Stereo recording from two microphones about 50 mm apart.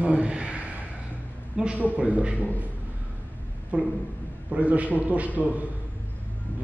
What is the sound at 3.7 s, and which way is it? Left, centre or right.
A man's voice, right.